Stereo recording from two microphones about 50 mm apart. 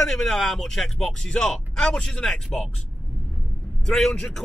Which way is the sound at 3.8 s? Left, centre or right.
Centre.